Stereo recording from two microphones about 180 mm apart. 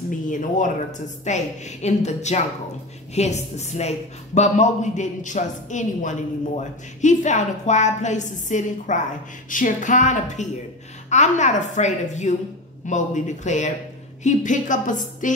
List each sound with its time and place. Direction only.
0.1 s a woman's voice: 45° left (ahead or behind)